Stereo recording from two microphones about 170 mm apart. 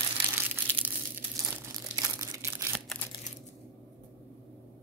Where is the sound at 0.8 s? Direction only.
10° right (ahead or behind).